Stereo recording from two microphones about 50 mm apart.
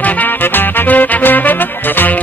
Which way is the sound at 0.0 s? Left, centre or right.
Left.